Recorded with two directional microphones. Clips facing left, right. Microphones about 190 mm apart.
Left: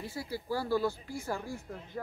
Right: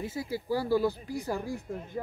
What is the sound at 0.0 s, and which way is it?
Speech, 20° right (ahead or behind).